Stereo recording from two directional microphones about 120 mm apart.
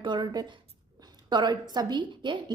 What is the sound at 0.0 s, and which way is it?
A woman's voice, 35° right (ahead or behind).